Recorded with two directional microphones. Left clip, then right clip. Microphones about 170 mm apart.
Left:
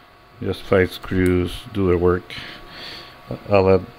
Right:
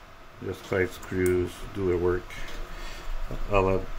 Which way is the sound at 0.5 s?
60° left (ahead or behind).